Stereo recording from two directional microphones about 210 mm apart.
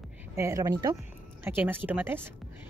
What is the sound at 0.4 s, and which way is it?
Speech, 15° right (ahead or behind).